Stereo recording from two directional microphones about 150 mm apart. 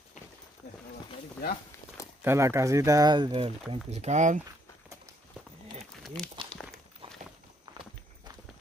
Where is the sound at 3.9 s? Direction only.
50° right (ahead or behind).